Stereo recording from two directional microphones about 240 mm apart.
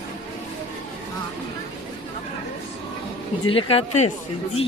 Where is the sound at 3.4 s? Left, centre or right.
Left.